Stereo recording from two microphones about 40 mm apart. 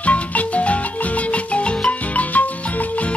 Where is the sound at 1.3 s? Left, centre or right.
Left.